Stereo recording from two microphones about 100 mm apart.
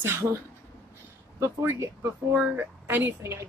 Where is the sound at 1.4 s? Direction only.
25° right (ahead or behind).